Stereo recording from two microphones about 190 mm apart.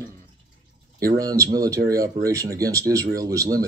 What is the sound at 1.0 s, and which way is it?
Speech, 20° right (ahead or behind).